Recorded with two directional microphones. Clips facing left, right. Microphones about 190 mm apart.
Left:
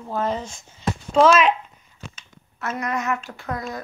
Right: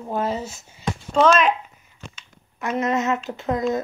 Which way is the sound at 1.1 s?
Centre (ahead or behind).